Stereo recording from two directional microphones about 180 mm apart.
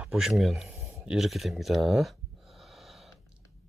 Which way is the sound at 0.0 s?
Centre (ahead or behind).